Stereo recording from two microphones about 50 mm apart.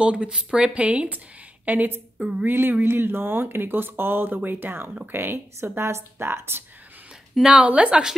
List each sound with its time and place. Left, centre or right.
0.0 s a woman's voice: right
7.4 s a woman's voice: right